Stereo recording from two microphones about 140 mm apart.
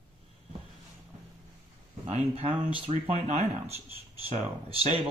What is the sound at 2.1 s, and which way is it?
Speech, 45° right (ahead or behind).